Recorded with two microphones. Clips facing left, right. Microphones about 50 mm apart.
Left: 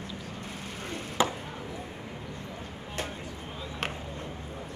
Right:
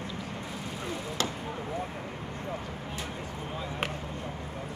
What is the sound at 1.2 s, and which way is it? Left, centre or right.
Chop, centre.